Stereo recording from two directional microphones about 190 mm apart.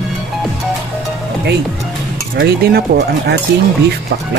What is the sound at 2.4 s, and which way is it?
Speech, 55° right (ahead or behind).